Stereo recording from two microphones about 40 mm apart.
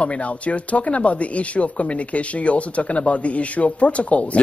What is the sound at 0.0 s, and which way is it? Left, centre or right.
Speech, left.